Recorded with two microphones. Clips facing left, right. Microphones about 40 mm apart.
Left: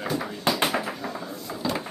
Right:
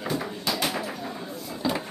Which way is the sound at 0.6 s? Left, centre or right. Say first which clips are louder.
Left 3 dB; centre.